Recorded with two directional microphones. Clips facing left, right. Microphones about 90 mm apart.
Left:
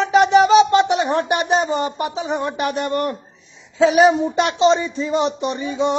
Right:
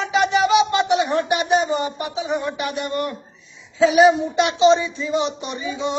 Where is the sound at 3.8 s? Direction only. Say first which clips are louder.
Left 1 dB; 45° left (ahead or behind).